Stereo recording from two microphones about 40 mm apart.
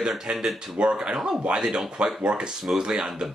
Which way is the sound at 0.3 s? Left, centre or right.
Right.